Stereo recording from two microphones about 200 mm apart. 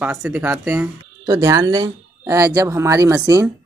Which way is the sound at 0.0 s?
5° right (ahead or behind).